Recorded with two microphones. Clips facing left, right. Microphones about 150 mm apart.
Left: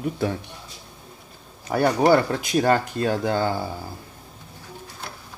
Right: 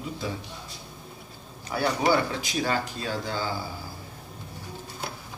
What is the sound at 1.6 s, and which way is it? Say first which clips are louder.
Speech: left 6 dB; 50° left (ahead or behind).